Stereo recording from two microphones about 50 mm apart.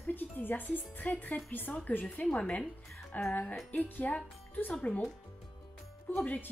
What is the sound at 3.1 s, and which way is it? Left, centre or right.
Music, left.